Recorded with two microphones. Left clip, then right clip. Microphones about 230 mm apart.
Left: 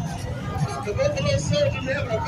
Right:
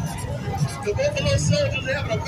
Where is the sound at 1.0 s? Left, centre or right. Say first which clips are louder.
Even; right.